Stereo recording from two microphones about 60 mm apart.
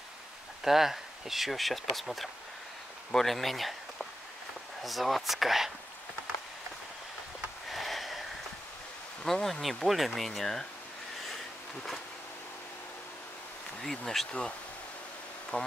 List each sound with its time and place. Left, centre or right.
0.7 s speech: centre
7.7 s a sound: centre
9.2 s speech: centre
11.2 s a sound: centre
13.8 s speech: centre
15.5 s speech: left